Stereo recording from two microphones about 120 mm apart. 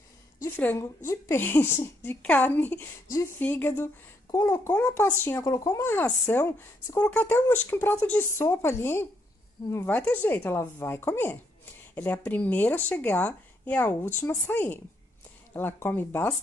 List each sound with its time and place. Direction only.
0.4 s a woman's voice: 20° left (ahead or behind)
5.4 s speech: 30° left (ahead or behind)
5.9 s speech: 15° left (ahead or behind)